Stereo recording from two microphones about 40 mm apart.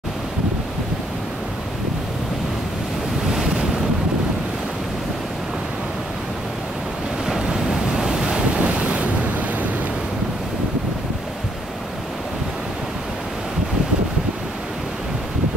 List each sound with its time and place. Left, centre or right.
3.3 s waves: centre
7.2 s waves: centre; by 9.7 s right